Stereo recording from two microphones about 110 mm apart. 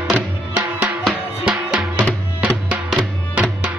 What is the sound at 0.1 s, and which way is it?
Music, 15° right (ahead or behind).